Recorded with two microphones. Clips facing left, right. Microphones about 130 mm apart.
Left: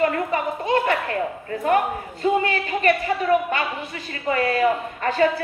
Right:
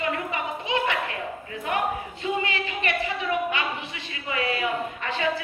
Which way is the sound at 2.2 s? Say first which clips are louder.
Left 7 dB; 45° left (ahead or behind).